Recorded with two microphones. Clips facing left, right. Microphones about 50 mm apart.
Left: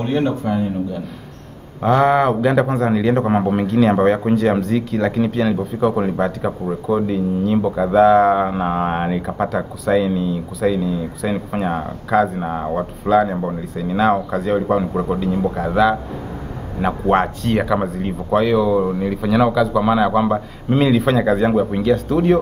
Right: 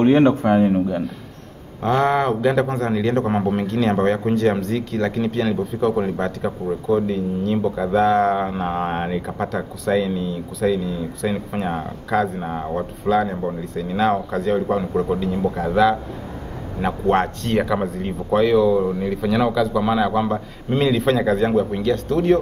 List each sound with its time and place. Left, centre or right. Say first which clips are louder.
0.0 s a man's voice: right 5 dB; right
1.8 s speech: left 4 dB; centre